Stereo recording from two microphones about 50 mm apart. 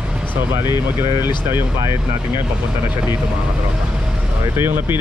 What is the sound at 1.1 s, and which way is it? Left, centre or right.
Speech, right.